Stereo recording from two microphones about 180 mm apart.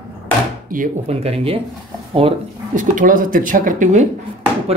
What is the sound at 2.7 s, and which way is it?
Speech, 45° right (ahead or behind).